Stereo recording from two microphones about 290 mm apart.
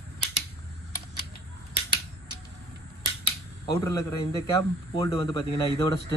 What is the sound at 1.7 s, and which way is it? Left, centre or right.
Scissors, centre.